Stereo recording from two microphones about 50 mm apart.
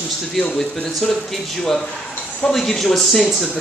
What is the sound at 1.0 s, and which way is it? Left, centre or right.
Speech, centre.